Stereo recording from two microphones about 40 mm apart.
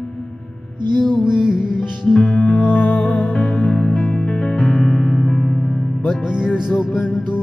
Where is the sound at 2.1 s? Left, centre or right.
Centre.